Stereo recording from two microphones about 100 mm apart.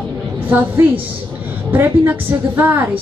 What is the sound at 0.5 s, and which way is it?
A woman's voice, 20° right (ahead or behind).